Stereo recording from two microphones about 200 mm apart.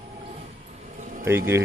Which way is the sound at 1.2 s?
15° right (ahead or behind).